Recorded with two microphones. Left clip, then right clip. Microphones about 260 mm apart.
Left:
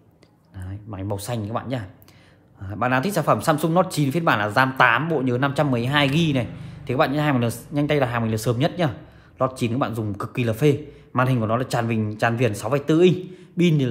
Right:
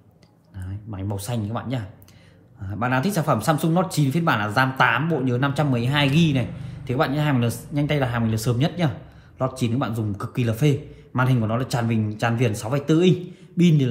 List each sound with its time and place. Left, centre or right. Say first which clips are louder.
0.6 s speech: left 1 dB; left